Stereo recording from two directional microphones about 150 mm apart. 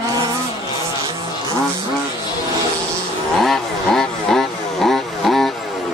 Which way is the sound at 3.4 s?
Centre (ahead or behind).